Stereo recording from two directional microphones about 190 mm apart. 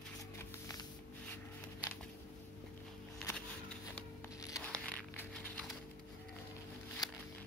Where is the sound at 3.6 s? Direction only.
10° left (ahead or behind).